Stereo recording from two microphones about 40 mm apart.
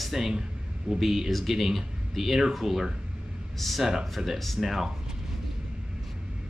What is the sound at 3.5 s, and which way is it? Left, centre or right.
Speech, centre.